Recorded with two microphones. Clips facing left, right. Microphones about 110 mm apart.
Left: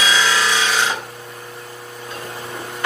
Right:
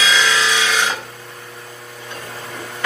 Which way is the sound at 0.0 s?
25° left (ahead or behind).